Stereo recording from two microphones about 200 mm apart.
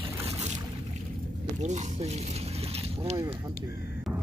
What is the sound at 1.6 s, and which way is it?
Speech, 35° right (ahead or behind).